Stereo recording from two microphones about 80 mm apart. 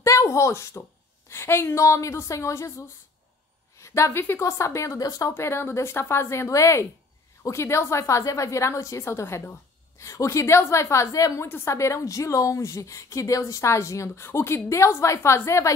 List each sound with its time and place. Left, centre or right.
0.0 s a sound: left
1.3 s a woman's voice: left
3.8 s a woman's voice: left
4.4 s a woman's voice: left
5.3 s a woman's voice: left
11.4 s a woman's voice: left